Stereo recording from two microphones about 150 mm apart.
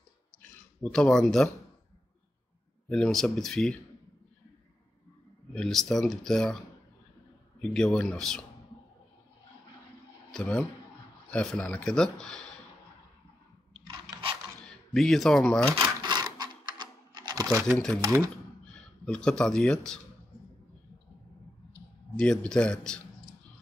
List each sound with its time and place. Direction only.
0.9 s speech: 5° left (ahead or behind)
2.9 s speech: centre (ahead or behind)
5.5 s speech: 5° left (ahead or behind)
7.7 s speech: 5° left (ahead or behind)
10.3 s speech: 5° left (ahead or behind)
13.8 s a sound: 30° right (ahead or behind)
15.0 s speech: centre (ahead or behind)
15.7 s sewing machine: 30° right (ahead or behind)
17.6 s speech: 5° left (ahead or behind)
18.0 s speech: 20° right (ahead or behind)
19.0 s speech: 5° left (ahead or behind)
22.1 s speech: 5° left (ahead or behind)